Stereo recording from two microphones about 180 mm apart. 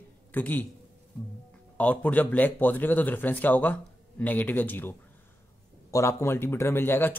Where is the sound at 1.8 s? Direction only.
10° left (ahead or behind).